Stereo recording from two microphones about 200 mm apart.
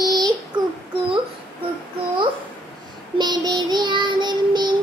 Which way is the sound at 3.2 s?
20° right (ahead or behind).